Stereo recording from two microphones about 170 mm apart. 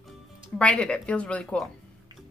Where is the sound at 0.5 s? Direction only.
5° left (ahead or behind).